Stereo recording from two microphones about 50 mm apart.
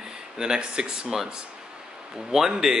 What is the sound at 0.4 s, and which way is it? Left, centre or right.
Speech, centre.